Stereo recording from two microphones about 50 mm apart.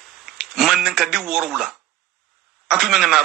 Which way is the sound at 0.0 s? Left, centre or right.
Centre.